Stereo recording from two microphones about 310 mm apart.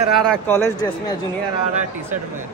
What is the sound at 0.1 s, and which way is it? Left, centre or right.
Speech, centre.